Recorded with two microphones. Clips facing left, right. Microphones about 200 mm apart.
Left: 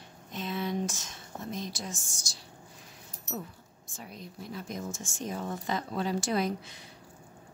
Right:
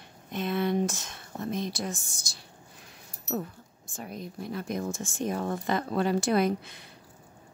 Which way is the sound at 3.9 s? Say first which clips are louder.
Right 6 dB; 50° right (ahead or behind).